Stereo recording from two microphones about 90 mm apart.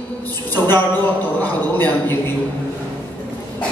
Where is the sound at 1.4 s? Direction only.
20° left (ahead or behind).